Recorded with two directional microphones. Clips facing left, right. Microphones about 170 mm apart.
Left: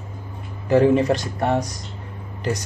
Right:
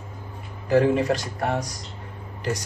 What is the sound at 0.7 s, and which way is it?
Speech, 25° left (ahead or behind).